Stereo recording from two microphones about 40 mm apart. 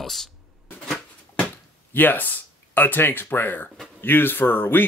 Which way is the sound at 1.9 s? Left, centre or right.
Left.